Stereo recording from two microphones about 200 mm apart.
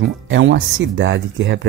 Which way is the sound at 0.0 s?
65° right (ahead or behind).